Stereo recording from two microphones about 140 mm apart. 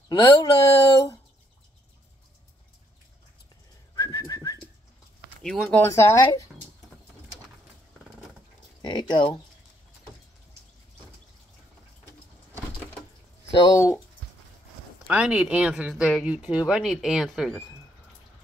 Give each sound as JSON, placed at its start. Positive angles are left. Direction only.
{"t": 0.1, "sound": "a sound", "side_deg": 25}
{"t": 3.9, "sound": "whistling", "side_deg": 25}
{"t": 5.4, "sound": "speech", "side_deg": 5}
{"t": 5.8, "sound": "speech", "side_deg": 20}
{"t": 8.8, "sound": "a sound", "side_deg": 35}
{"t": 13.6, "sound": "speech", "side_deg": 25}
{"t": 15.0, "sound": "speech", "side_deg": -10}